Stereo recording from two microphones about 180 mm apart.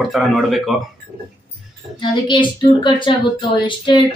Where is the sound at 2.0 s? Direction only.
25° left (ahead or behind).